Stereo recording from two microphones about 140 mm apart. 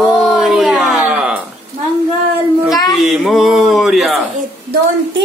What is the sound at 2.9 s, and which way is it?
Speech, centre (ahead or behind).